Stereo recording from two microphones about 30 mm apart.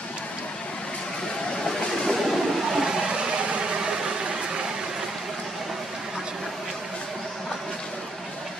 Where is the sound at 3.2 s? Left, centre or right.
Right.